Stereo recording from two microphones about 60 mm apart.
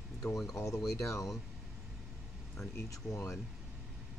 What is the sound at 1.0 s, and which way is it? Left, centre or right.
Speech, left.